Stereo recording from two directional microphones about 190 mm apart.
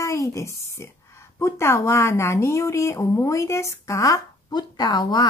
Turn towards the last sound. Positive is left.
turn(degrees=20)  # may be behind; listen again after turning